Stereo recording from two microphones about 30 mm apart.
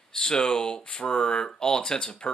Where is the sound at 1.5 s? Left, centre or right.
Left.